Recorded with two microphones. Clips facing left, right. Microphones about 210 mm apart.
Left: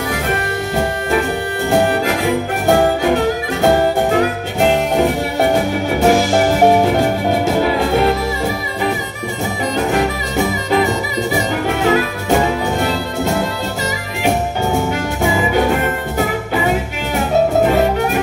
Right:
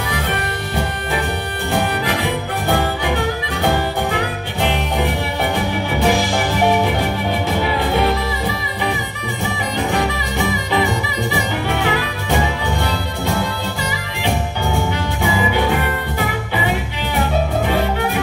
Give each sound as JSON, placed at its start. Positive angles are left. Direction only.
{"t": 2.7, "sound": "music", "side_deg": 45}
{"t": 5.4, "sound": "music", "side_deg": 50}
{"t": 9.8, "sound": "music", "side_deg": 45}